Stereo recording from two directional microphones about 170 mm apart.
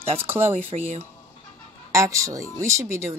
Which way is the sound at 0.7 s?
45° right (ahead or behind).